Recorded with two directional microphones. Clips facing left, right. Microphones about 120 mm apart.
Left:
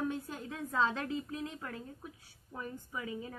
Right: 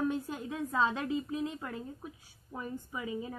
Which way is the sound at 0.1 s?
20° right (ahead or behind).